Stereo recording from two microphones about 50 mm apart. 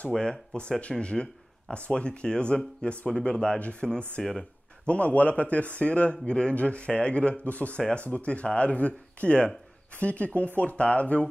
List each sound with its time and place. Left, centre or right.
0.1 s speech: centre
4.2 s speech: centre
4.8 s speech: left